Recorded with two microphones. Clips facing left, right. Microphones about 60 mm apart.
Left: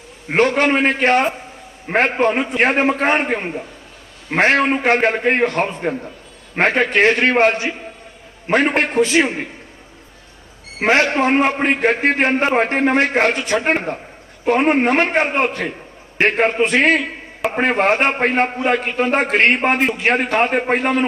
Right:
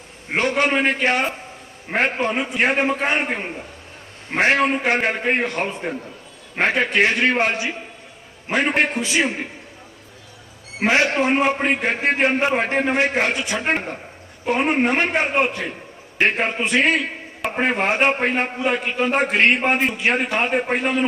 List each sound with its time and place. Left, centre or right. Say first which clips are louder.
0.4 s a man's voice: left 4 dB; left
4.3 s a man's voice: left 3 dB; left
10.8 s a man's voice: left 3 dB; left